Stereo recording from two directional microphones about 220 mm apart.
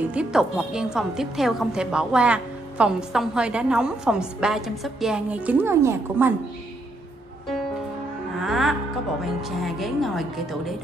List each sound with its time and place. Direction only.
0.1 s a woman's voice: 5° right (ahead or behind)
8.4 s music: centre (ahead or behind)
9.2 s a woman's voice: centre (ahead or behind)